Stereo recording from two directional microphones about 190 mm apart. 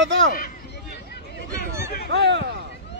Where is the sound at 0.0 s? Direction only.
70° right (ahead or behind).